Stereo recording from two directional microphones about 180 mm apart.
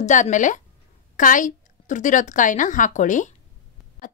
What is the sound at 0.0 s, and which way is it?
A woman's voice, 45° left (ahead or behind).